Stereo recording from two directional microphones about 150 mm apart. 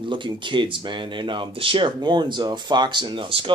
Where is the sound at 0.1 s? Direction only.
30° right (ahead or behind).